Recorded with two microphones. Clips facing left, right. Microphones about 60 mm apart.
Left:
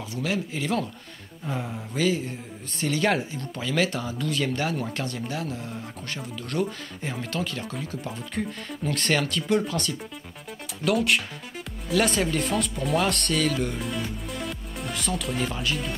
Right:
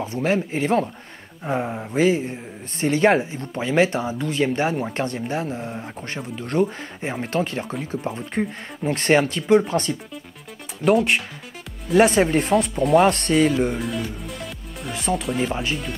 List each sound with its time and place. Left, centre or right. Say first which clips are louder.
0.0 s speech: right 7 dB; right
11.9 s speech: right 7 dB; right
12.7 s speech: right 12 dB; centre
13.1 s speech: right 6 dB; right
13.5 s speech: right 6 dB; centre
15.0 s speech: right 7 dB; right
15.2 s speech: right 5 dB; centre